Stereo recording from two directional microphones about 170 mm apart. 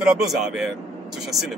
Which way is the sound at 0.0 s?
Centre (ahead or behind).